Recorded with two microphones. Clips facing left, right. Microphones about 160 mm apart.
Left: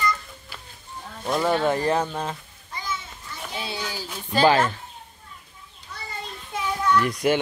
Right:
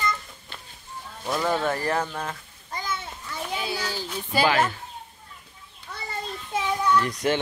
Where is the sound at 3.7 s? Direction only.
15° left (ahead or behind).